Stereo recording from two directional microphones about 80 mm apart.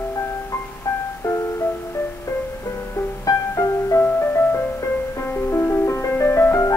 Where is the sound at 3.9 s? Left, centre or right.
Left.